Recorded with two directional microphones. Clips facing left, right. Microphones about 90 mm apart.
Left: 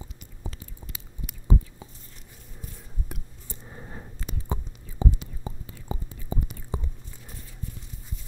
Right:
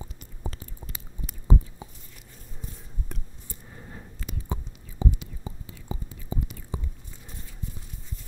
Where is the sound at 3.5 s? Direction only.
30° left (ahead or behind).